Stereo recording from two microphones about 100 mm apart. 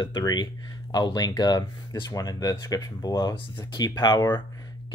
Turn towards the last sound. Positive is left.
turn(degrees=45)  # may be behind; listen again after turning